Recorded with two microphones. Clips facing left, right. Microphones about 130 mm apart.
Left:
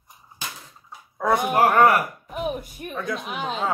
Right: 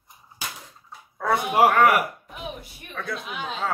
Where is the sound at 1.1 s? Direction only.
15° left (ahead or behind).